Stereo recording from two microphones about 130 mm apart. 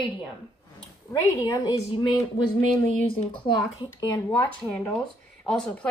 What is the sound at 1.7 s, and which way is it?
Speech, 45° left (ahead or behind).